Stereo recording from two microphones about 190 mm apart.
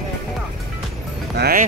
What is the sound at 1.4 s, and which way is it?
Music, 50° right (ahead or behind).